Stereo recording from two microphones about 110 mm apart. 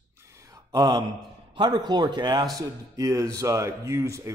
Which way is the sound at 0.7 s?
35° right (ahead or behind).